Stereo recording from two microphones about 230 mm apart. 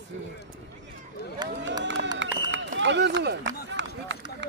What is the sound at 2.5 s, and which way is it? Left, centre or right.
Run, right.